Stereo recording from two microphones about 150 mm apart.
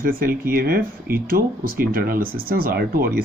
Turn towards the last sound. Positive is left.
turn(degrees=-80)